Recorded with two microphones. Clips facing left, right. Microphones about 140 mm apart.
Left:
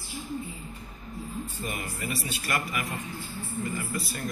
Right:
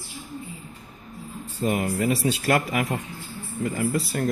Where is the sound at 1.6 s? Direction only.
85° right; by 4.3 s 65° right (ahead or behind).